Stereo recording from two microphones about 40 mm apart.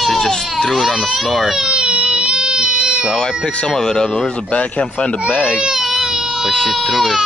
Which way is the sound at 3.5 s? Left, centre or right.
Left.